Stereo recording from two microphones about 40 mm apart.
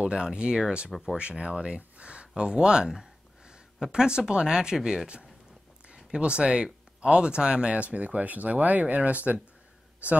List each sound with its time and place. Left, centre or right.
0.0 s speech: right